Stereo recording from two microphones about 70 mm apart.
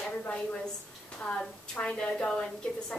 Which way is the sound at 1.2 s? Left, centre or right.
Centre.